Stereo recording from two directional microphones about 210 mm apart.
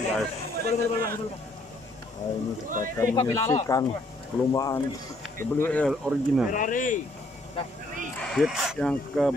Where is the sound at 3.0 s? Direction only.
15° left (ahead or behind).